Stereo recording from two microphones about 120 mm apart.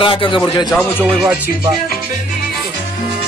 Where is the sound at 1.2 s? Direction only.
15° right (ahead or behind).